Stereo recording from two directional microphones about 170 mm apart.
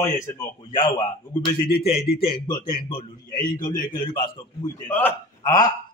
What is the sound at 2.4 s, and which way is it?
Speech, 25° left (ahead or behind).